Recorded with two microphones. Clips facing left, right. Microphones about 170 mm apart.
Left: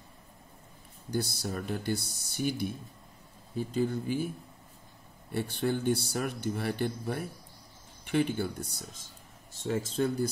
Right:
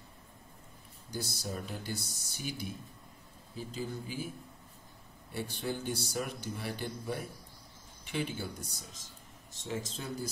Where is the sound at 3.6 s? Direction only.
55° left (ahead or behind).